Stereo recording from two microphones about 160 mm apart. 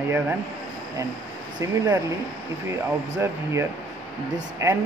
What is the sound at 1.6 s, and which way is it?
Speech, 20° right (ahead or behind).